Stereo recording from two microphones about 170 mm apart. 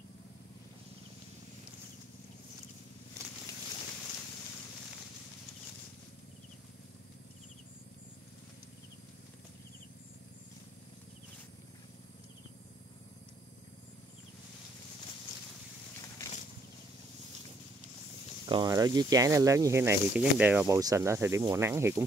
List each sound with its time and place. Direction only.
18.5 s speech: 25° right (ahead or behind)